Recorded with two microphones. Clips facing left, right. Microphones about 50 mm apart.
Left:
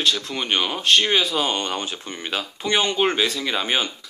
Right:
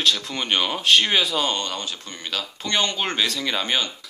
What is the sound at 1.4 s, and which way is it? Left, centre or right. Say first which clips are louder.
Speech: left 2 dB; left.